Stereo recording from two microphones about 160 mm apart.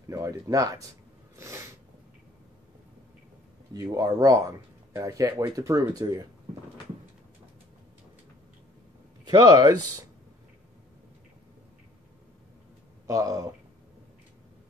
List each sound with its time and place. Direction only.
0.1 s speech: 20° right (ahead or behind)
1.3 s snort: 15° right (ahead or behind)
3.7 s speech: 20° right (ahead or behind)
9.2 s speech: 25° right (ahead or behind)
13.0 s speech: 20° right (ahead or behind)